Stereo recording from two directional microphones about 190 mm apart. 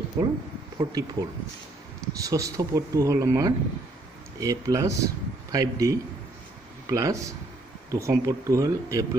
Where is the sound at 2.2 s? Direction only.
15° right (ahead or behind).